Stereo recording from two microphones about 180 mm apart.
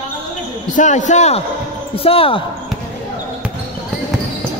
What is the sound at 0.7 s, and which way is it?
A man's voice, 45° left (ahead or behind).